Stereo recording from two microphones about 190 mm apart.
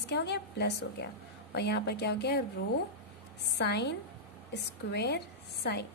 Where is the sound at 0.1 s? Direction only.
60° left (ahead or behind).